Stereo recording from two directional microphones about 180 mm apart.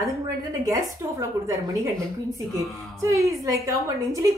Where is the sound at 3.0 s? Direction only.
15° right (ahead or behind).